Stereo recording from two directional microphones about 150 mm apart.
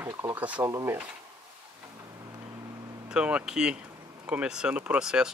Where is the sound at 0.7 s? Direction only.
25° right (ahead or behind).